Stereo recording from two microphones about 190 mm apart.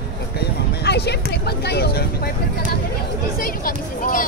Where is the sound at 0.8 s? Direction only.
60° left (ahead or behind).